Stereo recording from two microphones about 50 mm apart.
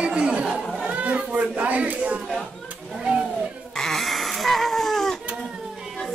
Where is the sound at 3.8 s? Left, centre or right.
Centre.